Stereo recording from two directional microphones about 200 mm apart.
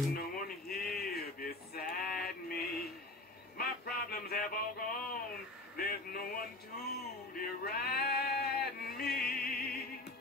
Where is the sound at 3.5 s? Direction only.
50° left (ahead or behind).